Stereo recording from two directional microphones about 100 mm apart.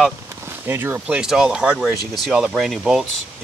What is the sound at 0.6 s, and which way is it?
Speech, 20° right (ahead or behind).